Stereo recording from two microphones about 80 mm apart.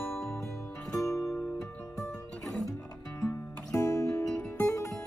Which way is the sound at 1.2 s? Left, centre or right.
Centre.